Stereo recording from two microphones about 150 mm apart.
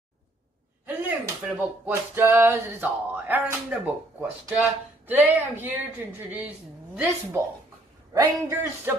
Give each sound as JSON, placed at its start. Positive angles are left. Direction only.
{"t": 0.8, "sound": "speech", "side_deg": -10}
{"t": 8.1, "sound": "speech", "side_deg": -15}